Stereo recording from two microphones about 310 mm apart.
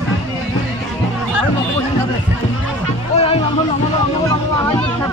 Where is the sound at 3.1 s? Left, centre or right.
Centre.